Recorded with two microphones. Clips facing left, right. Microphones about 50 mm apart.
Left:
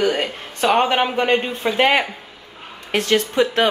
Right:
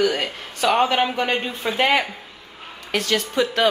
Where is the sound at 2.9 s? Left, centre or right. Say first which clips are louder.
Left 4 dB; left.